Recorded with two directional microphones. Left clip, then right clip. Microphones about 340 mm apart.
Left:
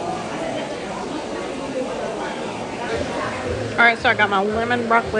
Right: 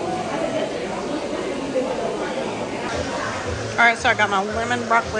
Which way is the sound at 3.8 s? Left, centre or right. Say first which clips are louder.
Left 1 dB; centre.